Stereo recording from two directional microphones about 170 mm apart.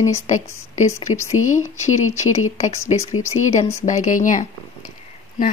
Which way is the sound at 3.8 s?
45° left (ahead or behind).